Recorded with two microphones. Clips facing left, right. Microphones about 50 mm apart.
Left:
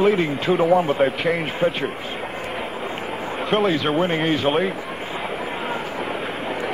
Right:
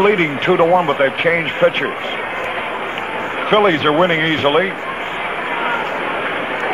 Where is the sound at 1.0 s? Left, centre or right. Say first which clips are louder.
Right 5 dB; right.